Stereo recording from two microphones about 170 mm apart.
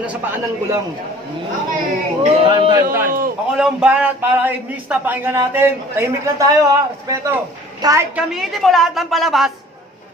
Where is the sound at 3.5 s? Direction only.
5° right (ahead or behind).